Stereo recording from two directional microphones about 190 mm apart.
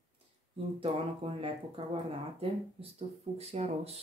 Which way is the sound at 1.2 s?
30° right (ahead or behind).